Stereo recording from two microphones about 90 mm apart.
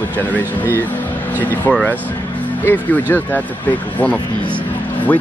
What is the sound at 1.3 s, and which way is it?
Speech, 20° left (ahead or behind).